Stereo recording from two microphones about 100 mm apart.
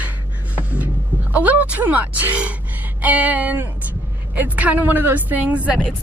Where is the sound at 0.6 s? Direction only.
15° right (ahead or behind).